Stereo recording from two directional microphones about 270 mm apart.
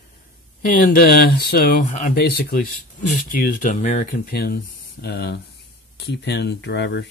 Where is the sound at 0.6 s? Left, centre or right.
Left.